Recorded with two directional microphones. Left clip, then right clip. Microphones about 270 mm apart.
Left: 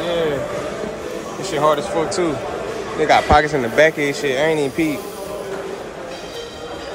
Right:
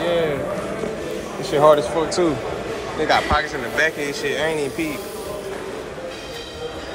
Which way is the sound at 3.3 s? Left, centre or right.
Left.